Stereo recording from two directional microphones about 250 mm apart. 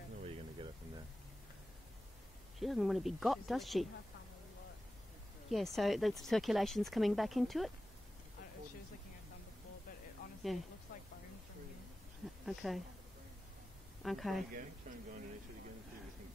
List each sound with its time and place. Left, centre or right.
2.6 s speech: centre
5.5 s speech: centre
10.5 s speech: centre
12.4 s speech: centre
14.0 s speech: centre
14.8 s speech: right